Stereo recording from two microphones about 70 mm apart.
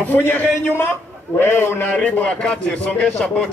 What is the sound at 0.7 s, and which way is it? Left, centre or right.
A man's voice, left.